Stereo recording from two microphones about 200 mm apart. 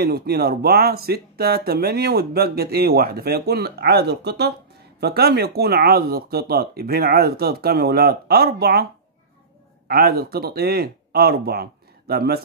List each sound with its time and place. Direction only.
0.0 s speech: 50° right (ahead or behind)
9.8 s speech: 50° right (ahead or behind)